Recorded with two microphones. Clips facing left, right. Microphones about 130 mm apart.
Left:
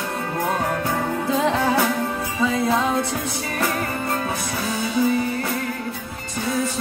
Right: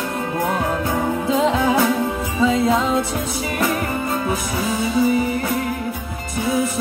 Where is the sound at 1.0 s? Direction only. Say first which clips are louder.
Right 5 dB; 20° right (ahead or behind).